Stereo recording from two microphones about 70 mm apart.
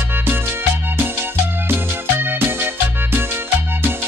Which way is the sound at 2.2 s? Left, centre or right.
Right.